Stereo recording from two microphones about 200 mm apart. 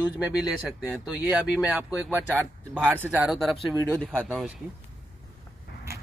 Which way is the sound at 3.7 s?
15° right (ahead or behind).